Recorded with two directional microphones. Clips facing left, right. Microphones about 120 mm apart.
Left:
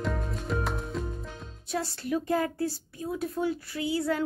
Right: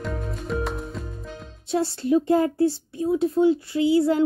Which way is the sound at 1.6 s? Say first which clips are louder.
Right 9 dB; 25° right (ahead or behind).